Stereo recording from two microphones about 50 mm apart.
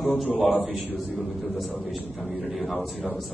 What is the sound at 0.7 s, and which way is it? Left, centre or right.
A man's voice, centre.